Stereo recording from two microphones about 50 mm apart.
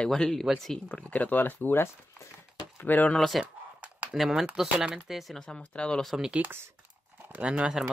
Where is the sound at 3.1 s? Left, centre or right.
Centre.